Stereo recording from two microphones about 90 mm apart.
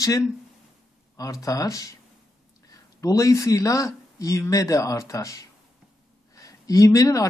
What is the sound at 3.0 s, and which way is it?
Speech, 35° left (ahead or behind).